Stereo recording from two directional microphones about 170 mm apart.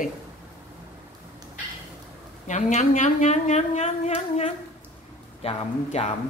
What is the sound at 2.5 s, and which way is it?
A woman's voice, 45° left (ahead or behind).